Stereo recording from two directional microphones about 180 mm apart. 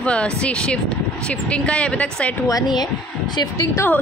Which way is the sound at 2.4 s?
20° left (ahead or behind).